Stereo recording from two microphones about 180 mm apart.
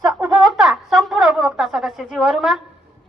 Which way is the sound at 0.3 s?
Centre (ahead or behind).